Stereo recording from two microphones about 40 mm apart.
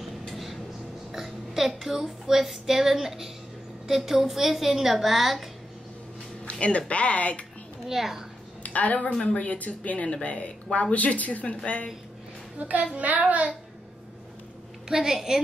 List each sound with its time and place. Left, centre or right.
0.0 s a sound: centre
1.1 s a woman's voice: centre
6.4 s a sound: left
6.9 s speech: left
7.9 s a woman's voice: centre
8.6 s a woman's voice: left
9.1 s speech: left
9.4 s speech: left
12.5 s a child's voice: right
14.9 s a woman's voice: centre